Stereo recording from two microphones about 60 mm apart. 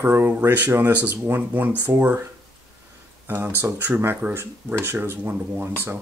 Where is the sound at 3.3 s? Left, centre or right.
Right.